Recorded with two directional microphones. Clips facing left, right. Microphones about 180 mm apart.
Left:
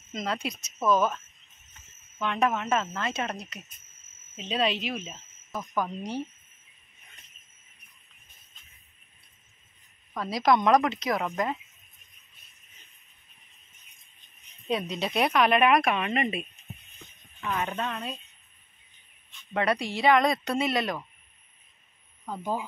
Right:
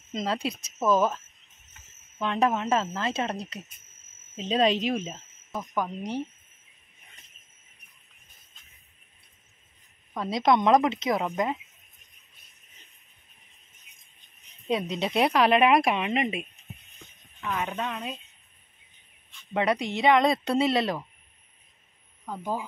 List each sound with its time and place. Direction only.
0.1 s speech: 30° right (ahead or behind)
5.8 s a woman's voice: 15° right (ahead or behind)
10.1 s speech: 25° right (ahead or behind)
14.7 s speech: 25° right (ahead or behind)
17.4 s a woman's voice: 5° right (ahead or behind)
19.5 s speech: 20° right (ahead or behind)
22.3 s a woman's voice: 15° right (ahead or behind)